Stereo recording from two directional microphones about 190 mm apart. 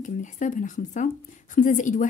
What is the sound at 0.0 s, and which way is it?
A woman's voice, 40° left (ahead or behind).